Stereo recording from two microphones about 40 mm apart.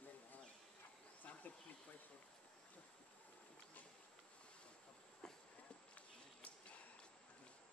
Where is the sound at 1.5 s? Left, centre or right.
Left.